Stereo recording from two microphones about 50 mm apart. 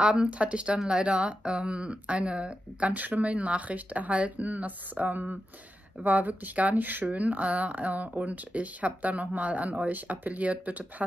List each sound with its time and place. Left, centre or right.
0.0 s speech: right